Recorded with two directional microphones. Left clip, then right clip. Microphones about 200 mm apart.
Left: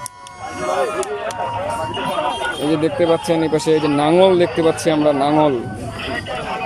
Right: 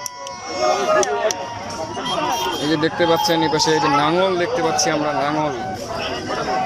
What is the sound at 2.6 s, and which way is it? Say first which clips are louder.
Speech: left 3 dB; 10° left (ahead or behind).